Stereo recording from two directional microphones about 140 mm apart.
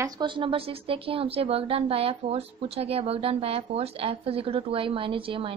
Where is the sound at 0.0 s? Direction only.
35° right (ahead or behind).